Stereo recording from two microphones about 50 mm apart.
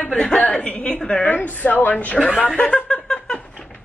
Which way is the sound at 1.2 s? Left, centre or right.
Left.